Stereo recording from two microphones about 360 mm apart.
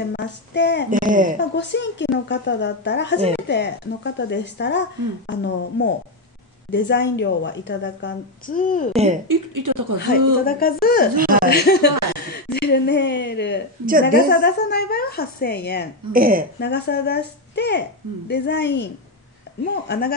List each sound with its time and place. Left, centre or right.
0.1 s speech: left
0.8 s speech: right
1.5 s speech: left
9.3 s speech: right
9.9 s speech: left
11.1 s speech: right
11.4 s speech: left
16.1 s speech: right
16.5 s speech: left